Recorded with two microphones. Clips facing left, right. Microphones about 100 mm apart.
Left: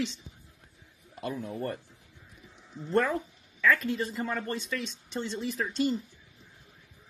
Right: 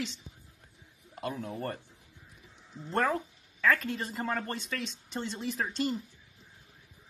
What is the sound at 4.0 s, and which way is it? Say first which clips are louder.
Speech: left 2 dB; 40° right (ahead or behind).